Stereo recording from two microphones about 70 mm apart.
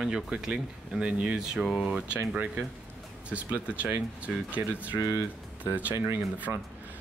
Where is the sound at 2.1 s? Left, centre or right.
Right.